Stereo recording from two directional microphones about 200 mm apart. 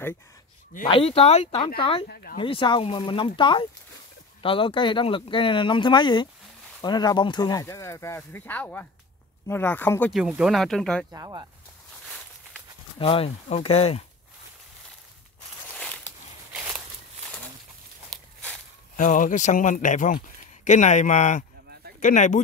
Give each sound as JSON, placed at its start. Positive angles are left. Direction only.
{"t": 0.8, "sound": "speech", "side_deg": 25}
{"t": 2.0, "sound": "speech", "side_deg": 45}
{"t": 2.3, "sound": "speech", "side_deg": 25}
{"t": 10.2, "sound": "speech", "side_deg": -5}
{"t": 11.1, "sound": "speech", "side_deg": -20}
{"t": 13.0, "sound": "speech", "side_deg": 30}
{"t": 15.7, "sound": "a sound", "side_deg": 5}
{"t": 16.5, "sound": "walk", "side_deg": -5}
{"t": 18.1, "sound": "walk", "side_deg": 5}
{"t": 18.9, "sound": "speech", "side_deg": 40}